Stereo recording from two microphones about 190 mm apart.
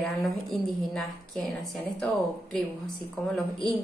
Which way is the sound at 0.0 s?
Centre (ahead or behind).